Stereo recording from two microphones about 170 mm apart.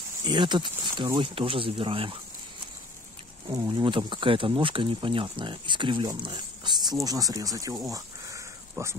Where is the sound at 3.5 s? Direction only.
20° right (ahead or behind).